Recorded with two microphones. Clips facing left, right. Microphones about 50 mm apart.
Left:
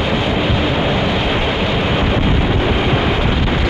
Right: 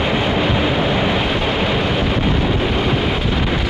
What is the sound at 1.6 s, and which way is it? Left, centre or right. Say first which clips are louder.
Vehicle: left 1 dB; centre.